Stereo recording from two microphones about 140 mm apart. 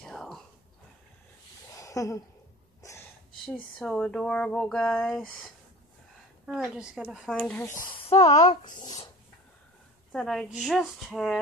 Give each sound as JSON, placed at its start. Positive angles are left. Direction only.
{"t": 0.0, "sound": "whispering", "side_deg": 5}
{"t": 1.8, "sound": "a sound", "side_deg": 20}
{"t": 3.7, "sound": "speech", "side_deg": 5}
{"t": 7.7, "sound": "speech", "side_deg": 85}
{"t": 8.0, "sound": "a sound", "side_deg": 45}
{"t": 10.1, "sound": "speech", "side_deg": 0}